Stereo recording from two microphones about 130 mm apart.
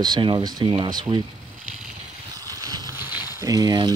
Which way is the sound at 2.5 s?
25° right (ahead or behind).